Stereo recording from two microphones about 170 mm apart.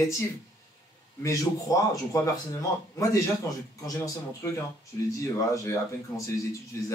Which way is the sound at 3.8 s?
20° left (ahead or behind).